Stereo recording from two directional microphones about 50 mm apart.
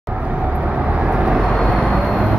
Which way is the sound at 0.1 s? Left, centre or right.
Right.